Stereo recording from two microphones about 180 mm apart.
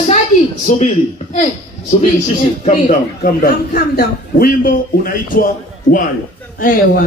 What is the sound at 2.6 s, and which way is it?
A man's voice, 45° left (ahead or behind).